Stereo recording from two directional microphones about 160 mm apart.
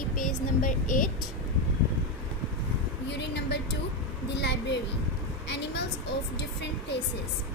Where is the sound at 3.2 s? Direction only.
90° left.